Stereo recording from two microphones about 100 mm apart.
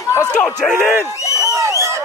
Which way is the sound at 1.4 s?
30° right (ahead or behind).